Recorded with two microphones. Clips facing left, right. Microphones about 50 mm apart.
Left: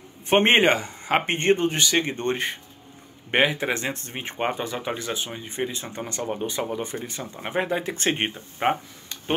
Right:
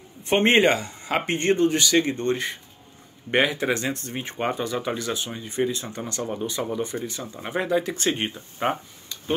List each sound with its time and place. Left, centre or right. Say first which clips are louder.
0.3 s speech: even; left
3.3 s speech: even; centre